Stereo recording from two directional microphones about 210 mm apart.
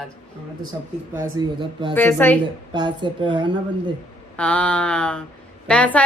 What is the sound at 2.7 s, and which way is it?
Speech, 20° right (ahead or behind).